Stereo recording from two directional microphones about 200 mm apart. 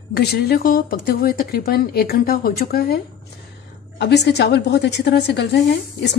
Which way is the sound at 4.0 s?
55° left (ahead or behind).